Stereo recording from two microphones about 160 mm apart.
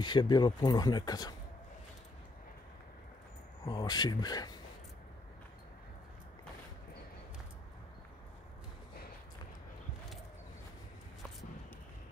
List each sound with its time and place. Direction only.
0.0 s speech: 25° left (ahead or behind)
3.6 s speech: 25° left (ahead or behind)